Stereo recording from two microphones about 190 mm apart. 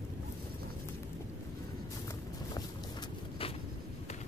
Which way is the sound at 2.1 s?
20° left (ahead or behind).